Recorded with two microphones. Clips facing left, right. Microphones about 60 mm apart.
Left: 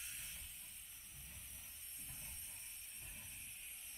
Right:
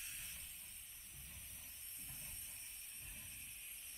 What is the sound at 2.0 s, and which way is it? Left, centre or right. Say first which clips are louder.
Steam: even; centre.